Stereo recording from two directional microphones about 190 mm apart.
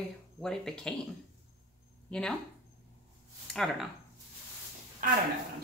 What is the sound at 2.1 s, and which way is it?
Speech, 5° left (ahead or behind).